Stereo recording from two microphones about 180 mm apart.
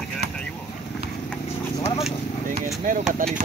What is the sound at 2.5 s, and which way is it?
Speech, 45° right (ahead or behind).